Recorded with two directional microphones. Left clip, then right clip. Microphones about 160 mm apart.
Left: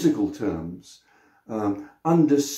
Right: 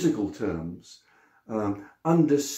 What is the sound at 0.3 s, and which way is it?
Speech, 20° right (ahead or behind).